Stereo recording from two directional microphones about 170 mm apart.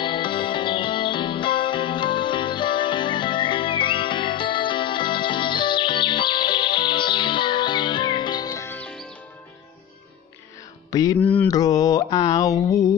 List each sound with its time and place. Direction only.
0.0 s music: 30° left (ahead or behind); by 9.1 s 5° left (ahead or behind)
10.9 s music: 20° left (ahead or behind)
11.1 s mantra: 10° left (ahead or behind)
11.4 s a sound: 20° left (ahead or behind)